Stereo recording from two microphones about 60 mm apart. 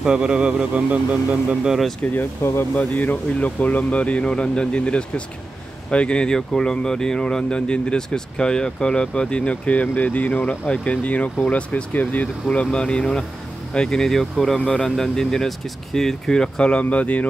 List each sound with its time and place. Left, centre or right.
0.0 s speech: centre
2.0 s speech: left